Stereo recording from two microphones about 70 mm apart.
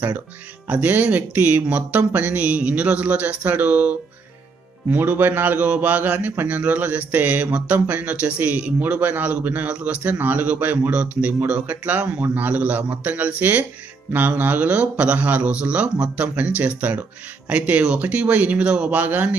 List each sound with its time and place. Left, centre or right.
0.7 s speech: right
4.9 s speech: right